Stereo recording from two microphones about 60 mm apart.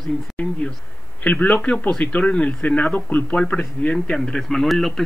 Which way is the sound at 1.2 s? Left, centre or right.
Left.